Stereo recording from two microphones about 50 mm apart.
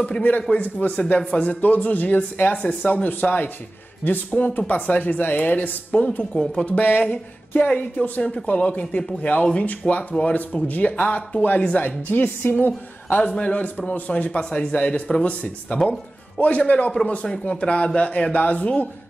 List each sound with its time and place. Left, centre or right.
0.5 s speech: left
2.5 s speech: left
6.1 s speech: left
6.7 s speech: left
8.2 s speech: centre
8.5 s speech: left